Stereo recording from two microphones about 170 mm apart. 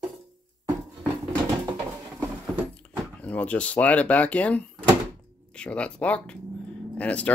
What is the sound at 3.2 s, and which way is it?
Speech, 10° left (ahead or behind).